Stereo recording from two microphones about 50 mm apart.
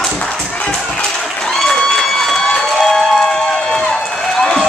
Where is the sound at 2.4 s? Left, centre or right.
Centre.